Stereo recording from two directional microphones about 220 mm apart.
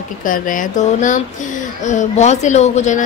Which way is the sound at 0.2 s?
35° left (ahead or behind).